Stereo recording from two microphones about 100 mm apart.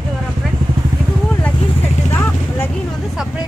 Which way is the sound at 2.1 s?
20° left (ahead or behind).